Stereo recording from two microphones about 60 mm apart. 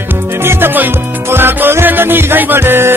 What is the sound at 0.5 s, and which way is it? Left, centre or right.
Music, right.